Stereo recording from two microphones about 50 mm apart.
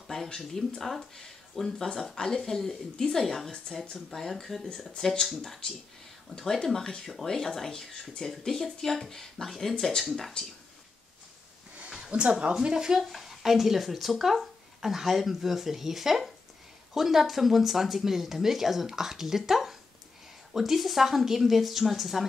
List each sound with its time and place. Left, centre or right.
0.1 s a woman's voice: centre
12.1 s speech: right; by 22.2 s centre